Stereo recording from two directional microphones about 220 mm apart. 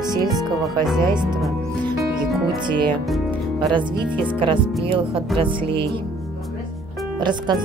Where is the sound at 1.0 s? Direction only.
20° right (ahead or behind).